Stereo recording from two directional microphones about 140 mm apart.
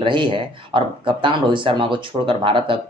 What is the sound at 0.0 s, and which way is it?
Speech, 35° right (ahead or behind).